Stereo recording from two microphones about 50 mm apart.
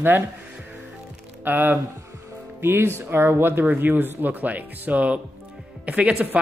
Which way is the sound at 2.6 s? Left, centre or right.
Right.